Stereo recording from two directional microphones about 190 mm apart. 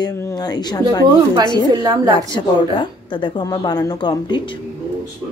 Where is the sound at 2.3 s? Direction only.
25° left (ahead or behind).